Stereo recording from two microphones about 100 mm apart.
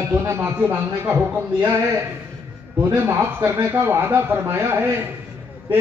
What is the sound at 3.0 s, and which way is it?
A man's voice, 25° right (ahead or behind).